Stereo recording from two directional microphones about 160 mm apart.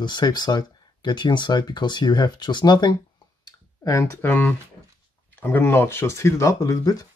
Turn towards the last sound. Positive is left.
turn(degrees=20)  # may be behind; listen again after turning